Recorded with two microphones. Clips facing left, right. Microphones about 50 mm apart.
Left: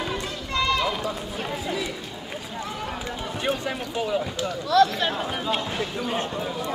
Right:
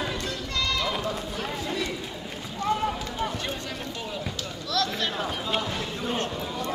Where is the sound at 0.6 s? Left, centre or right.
Left.